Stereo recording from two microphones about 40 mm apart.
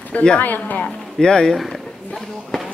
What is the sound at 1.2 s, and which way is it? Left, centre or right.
Speech, centre.